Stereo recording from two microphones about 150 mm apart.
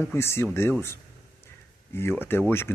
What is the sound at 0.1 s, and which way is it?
Speech, 15° left (ahead or behind).